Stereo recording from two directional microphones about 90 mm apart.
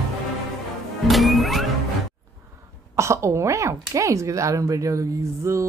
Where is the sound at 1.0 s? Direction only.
Centre (ahead or behind).